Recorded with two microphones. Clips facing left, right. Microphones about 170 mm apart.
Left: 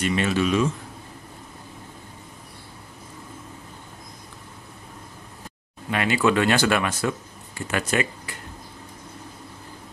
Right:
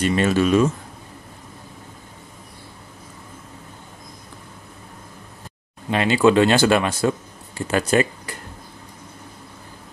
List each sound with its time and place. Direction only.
0.0 s speech: 40° right (ahead or behind)
5.9 s speech: 25° right (ahead or behind)